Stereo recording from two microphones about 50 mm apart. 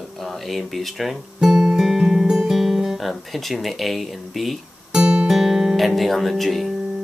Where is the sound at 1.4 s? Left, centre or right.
Centre.